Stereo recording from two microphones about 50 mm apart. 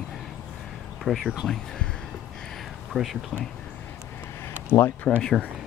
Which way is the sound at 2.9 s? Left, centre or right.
Centre.